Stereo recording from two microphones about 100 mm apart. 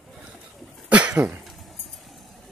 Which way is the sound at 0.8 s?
15° right (ahead or behind).